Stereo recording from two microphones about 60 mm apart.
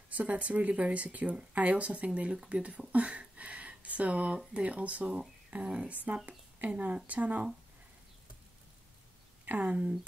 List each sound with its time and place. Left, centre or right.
0.1 s speech: right
2.9 s a sound: right
4.6 s a woman's voice: right
9.5 s speech: right